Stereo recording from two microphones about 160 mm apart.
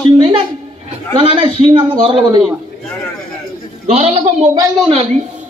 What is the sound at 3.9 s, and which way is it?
Speech, 40° right (ahead or behind).